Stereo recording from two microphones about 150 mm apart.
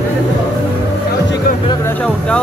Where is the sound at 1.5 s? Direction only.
70° left (ahead or behind).